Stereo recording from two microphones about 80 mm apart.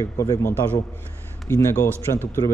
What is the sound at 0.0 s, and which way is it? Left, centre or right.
Speech, left.